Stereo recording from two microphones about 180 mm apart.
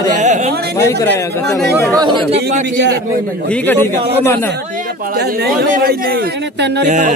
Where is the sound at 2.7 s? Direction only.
90° right.